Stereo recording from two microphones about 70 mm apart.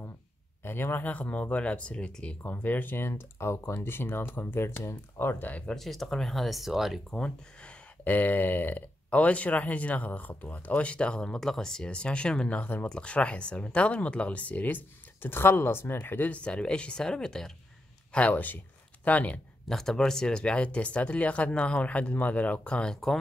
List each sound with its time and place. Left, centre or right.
0.7 s speech: left; by 2.3 s centre
2.4 s speech: left
5.8 s speech: centre
7.1 s speech: centre
8.0 s speech: left; by 17.5 s centre
18.1 s speech: left
19.7 s speech: centre